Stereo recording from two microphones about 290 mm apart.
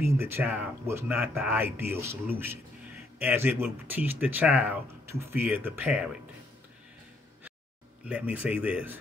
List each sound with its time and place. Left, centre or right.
0.0 s speech: centre
8.0 s a man's voice: centre